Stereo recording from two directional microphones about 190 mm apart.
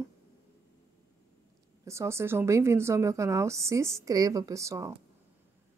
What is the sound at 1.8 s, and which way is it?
A woman's voice, 15° right (ahead or behind).